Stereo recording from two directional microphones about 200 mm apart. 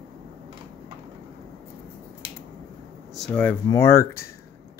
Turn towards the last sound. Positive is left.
turn(degrees=15)  # may be behind; listen again after turning